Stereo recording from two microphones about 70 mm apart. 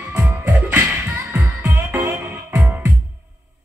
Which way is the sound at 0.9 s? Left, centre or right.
Right.